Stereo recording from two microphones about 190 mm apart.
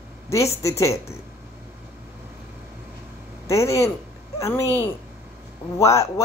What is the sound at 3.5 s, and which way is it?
Speech, 15° left (ahead or behind).